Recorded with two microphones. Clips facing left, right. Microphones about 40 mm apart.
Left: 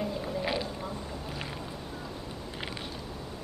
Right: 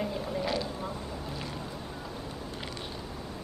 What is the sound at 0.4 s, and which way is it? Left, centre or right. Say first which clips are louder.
Vehicle: even; centre.